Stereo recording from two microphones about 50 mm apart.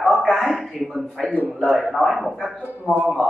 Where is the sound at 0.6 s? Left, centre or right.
Centre.